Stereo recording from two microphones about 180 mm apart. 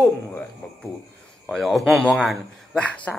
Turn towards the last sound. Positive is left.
turn(degrees=5)  # may be behind; listen again after turning